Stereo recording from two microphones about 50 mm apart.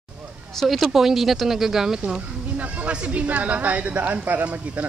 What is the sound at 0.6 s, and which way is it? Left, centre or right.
Speech, centre.